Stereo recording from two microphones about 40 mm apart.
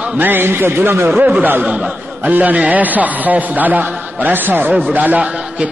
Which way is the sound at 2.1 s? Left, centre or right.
Right.